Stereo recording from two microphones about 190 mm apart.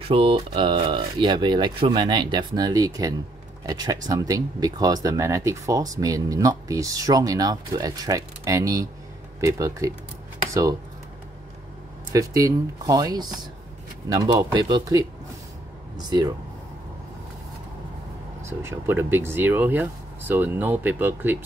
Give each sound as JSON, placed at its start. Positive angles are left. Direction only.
{"t": 0.0, "sound": "speech", "side_deg": -30}
{"t": 12.1, "sound": "speech", "side_deg": -15}
{"t": 18.6, "sound": "speech", "side_deg": -10}